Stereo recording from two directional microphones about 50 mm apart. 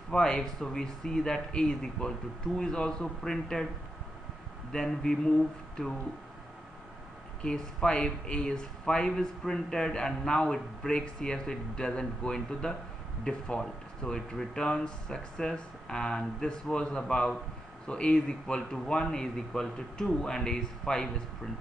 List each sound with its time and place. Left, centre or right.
0.1 s speech: centre
4.7 s speech: centre
7.4 s speech: centre